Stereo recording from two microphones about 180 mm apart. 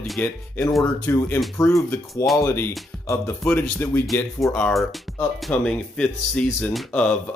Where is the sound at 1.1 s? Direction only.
15° left (ahead or behind).